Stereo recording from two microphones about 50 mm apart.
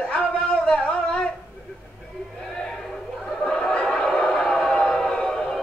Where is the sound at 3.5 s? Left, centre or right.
Centre.